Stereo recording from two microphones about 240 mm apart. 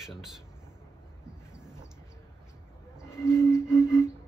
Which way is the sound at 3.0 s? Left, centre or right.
Centre.